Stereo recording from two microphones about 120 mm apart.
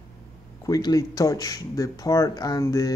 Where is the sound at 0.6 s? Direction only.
30° left (ahead or behind).